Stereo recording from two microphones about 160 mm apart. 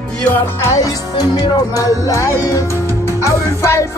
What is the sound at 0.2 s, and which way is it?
Music, 15° left (ahead or behind).